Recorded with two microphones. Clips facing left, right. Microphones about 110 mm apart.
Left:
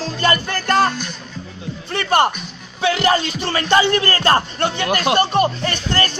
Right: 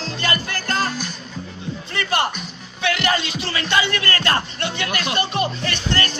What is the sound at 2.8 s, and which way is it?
Speech, 30° left (ahead or behind).